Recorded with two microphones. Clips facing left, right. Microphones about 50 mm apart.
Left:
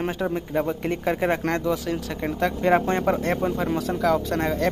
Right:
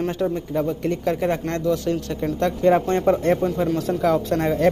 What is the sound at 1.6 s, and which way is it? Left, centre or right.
Speech, centre.